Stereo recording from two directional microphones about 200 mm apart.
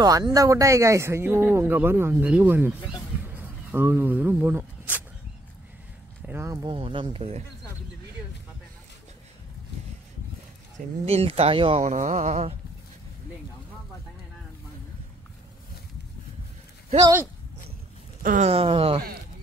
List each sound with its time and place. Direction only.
0.0 s speech: 20° right (ahead or behind)
6.2 s speech: 15° right (ahead or behind); by 7.4 s 30° right (ahead or behind)
11.1 s speech: 30° right (ahead or behind)
18.2 s speech: 35° right (ahead or behind)